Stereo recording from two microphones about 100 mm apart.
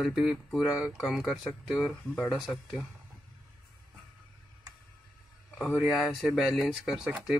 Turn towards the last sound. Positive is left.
turn(degrees=-5)  # may be behind; listen again after turning